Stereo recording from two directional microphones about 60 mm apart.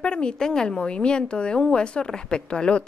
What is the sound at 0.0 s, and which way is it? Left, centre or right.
A woman's voice, centre.